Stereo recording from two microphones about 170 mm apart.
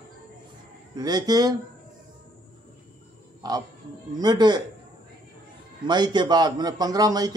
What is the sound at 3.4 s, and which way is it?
A man's voice, 25° right (ahead or behind).